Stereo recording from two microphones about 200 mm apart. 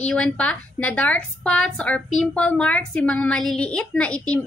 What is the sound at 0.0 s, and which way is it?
A woman's voice, 5° left (ahead or behind).